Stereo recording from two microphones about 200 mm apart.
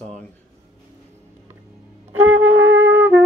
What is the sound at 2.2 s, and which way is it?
Wind instrument, 80° right.